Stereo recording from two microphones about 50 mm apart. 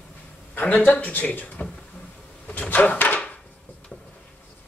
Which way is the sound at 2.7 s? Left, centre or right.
Left.